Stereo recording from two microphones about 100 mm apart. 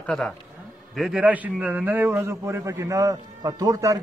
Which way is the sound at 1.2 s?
15° right (ahead or behind).